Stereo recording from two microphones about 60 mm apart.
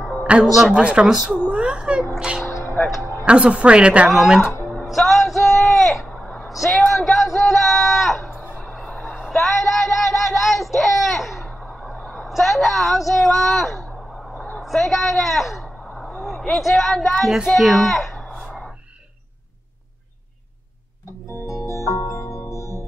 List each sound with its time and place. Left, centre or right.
0.3 s music: right
0.7 s a woman's voice: centre
2.5 s music: left
3.3 s a woman's voice: centre
4.8 s a sound: centre
6.5 s speech: centre
6.9 s a sound: centre
12.1 s a woman's voice: centre
21.6 s music: left